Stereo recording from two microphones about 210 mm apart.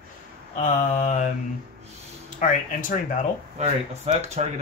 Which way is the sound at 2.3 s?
40° left (ahead or behind).